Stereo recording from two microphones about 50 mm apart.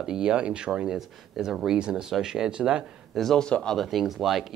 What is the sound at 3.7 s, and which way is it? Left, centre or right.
Speech, centre.